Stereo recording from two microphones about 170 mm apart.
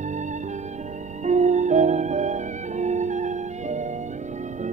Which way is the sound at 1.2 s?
45° right (ahead or behind).